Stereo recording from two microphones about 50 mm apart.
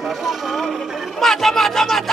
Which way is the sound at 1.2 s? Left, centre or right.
Centre.